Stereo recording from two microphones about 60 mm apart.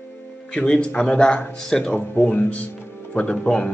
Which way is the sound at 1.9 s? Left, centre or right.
Left.